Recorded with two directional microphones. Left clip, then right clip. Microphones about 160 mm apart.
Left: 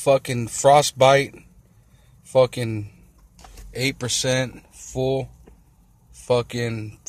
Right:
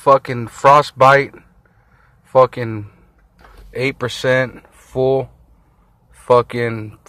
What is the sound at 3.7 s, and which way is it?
Speech, 10° left (ahead or behind).